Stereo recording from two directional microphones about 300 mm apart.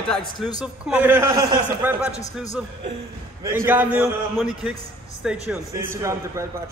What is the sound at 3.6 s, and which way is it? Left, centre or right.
A man's voice, centre.